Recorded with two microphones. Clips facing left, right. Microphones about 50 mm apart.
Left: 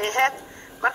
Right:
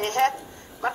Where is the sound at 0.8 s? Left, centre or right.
Left.